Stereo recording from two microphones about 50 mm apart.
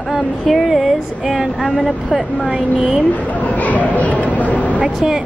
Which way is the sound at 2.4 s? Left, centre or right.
Centre.